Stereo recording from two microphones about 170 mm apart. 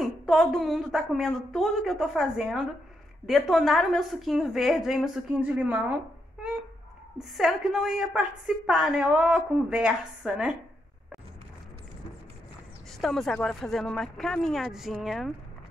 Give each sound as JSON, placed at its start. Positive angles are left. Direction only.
{"t": 0.0, "sound": "a woman's voice", "side_deg": 0}
{"t": 7.2, "sound": "a woman's voice", "side_deg": 0}
{"t": 13.0, "sound": "a woman's voice", "side_deg": 0}